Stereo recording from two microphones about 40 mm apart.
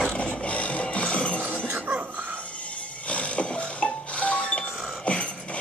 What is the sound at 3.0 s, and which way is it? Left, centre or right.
Music, left.